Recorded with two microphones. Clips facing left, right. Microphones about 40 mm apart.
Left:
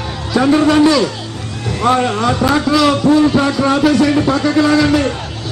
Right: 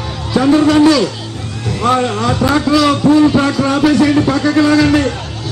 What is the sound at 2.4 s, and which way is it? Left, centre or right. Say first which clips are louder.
A man's voice: right 2 dB; centre.